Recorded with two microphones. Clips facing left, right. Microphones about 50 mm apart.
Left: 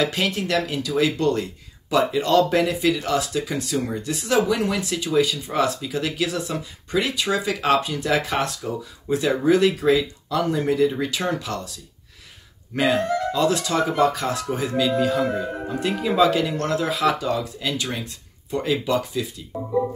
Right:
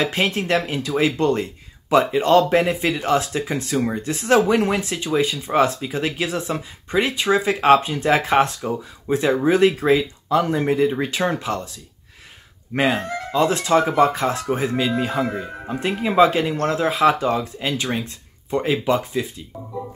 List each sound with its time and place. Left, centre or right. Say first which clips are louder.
0.0 s speech: right 2 dB; right